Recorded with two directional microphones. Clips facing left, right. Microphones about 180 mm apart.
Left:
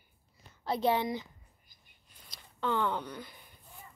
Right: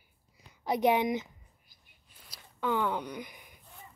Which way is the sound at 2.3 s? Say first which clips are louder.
Right 1 dB; 10° right (ahead or behind).